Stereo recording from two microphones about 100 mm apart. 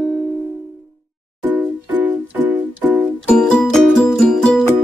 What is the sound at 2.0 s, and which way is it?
Music, 15° right (ahead or behind).